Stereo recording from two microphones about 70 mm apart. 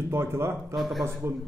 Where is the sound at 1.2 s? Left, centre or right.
Right.